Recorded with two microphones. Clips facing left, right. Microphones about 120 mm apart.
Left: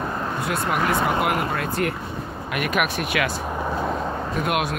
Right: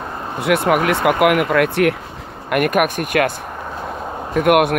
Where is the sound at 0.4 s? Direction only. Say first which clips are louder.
Right 10 dB; 65° right (ahead or behind).